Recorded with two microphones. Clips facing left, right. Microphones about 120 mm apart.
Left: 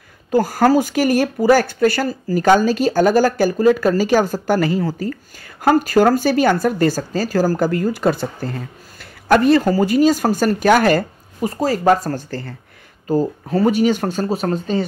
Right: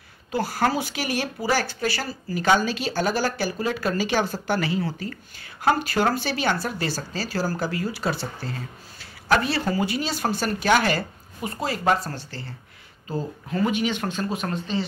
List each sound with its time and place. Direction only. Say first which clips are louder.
0.3 s speech: left 9 dB; 45° left (ahead or behind)
13.1 s speech: left 11 dB; 35° left (ahead or behind)